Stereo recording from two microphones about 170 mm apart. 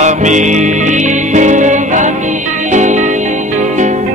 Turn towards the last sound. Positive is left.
turn(degrees=-45)  # may be behind; listen again after turning